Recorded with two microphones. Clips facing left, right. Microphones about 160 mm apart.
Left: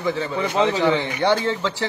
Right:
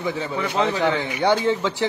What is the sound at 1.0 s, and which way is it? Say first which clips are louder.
Speech: right 1 dB; 10° right (ahead or behind).